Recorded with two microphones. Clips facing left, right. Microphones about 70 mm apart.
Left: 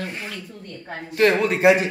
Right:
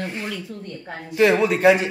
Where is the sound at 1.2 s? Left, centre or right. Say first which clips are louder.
Right 1 dB; centre.